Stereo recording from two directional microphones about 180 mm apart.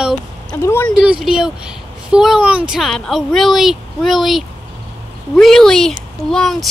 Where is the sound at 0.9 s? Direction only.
5° right (ahead or behind).